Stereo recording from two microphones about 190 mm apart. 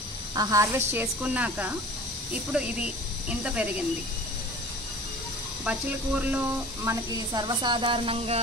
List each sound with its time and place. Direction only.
0.3 s speech: 20° right (ahead or behind)
5.7 s speech: 10° right (ahead or behind); by 8.4 s 30° right (ahead or behind)